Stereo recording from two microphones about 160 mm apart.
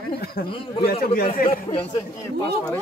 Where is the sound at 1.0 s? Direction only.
65° left (ahead or behind).